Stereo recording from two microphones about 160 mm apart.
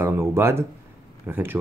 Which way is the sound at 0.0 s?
15° right (ahead or behind).